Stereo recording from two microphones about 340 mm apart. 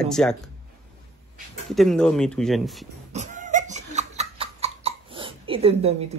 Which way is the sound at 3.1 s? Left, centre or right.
Right.